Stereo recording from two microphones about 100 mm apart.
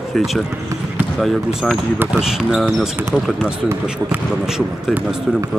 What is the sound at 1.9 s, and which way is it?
Speech, 20° right (ahead or behind).